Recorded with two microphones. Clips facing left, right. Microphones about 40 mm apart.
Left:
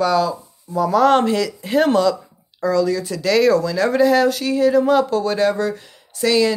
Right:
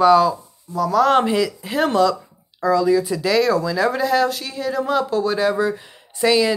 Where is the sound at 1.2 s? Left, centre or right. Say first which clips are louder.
Even; centre.